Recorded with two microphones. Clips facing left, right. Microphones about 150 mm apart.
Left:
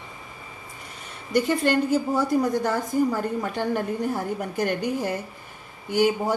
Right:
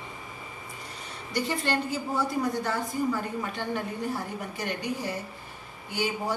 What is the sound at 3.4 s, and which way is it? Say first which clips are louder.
A woman's voice: left 6 dB; 45° left (ahead or behind).